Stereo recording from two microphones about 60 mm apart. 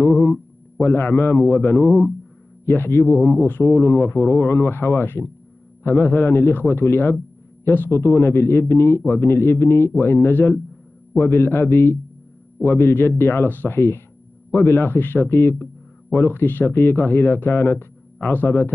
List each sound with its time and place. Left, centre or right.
0.0 s a man's voice: left